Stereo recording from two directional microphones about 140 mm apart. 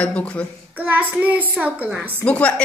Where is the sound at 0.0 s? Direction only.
10° left (ahead or behind).